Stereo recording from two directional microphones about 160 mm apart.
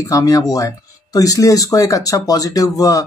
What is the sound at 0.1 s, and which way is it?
Speech, 20° left (ahead or behind).